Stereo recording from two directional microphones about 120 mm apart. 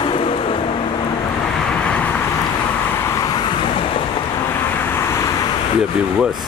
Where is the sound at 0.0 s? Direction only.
50° left (ahead or behind).